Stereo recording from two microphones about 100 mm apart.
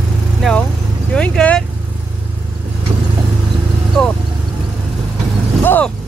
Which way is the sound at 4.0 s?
5° left (ahead or behind).